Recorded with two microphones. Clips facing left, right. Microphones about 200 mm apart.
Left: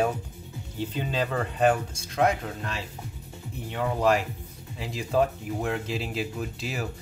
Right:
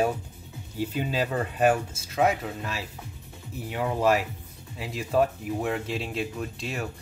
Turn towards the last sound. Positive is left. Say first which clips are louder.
# even
turn(degrees=0)  # may be behind; listen again after turning